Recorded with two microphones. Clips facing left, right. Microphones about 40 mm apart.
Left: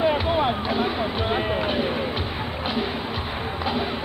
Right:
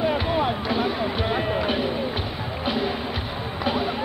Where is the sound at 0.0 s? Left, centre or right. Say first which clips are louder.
Left 2 dB; centre.